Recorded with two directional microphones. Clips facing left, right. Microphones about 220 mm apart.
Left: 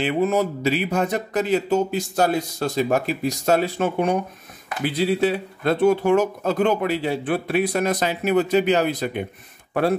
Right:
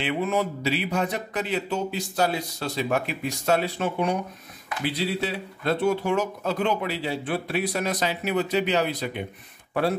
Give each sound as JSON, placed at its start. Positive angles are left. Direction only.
{"t": 0.0, "sound": "speech", "side_deg": 40}